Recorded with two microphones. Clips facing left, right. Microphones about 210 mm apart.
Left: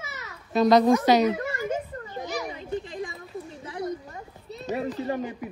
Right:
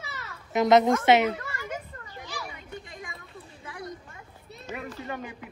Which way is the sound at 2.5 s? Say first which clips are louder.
Left 10 dB; 30° left (ahead or behind).